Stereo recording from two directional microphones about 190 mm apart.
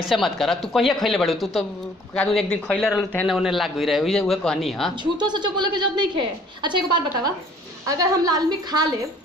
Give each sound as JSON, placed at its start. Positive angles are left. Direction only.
{"t": 0.0, "sound": "a man's voice", "side_deg": 0}
{"t": 5.1, "sound": "a woman's voice", "side_deg": -25}